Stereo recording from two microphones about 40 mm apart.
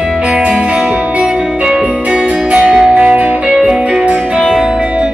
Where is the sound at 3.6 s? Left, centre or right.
Right.